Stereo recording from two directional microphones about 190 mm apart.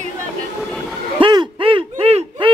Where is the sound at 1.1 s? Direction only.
25° right (ahead or behind).